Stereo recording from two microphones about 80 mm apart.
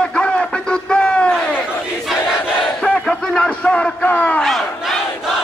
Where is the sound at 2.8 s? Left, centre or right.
Centre.